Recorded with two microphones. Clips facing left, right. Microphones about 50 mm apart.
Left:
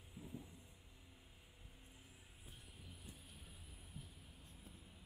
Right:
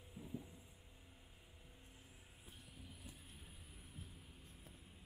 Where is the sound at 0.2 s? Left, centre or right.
Centre.